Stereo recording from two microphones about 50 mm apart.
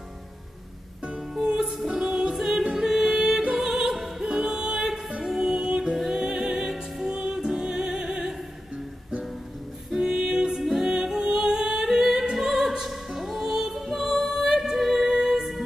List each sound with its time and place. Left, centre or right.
1.6 s music: centre
4.3 s music: centre
9.8 s music: centre